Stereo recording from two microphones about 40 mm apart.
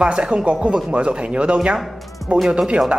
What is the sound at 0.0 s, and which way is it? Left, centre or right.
Speech, right.